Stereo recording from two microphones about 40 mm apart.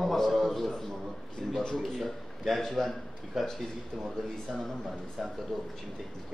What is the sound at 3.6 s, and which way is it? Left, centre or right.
A man's voice, centre.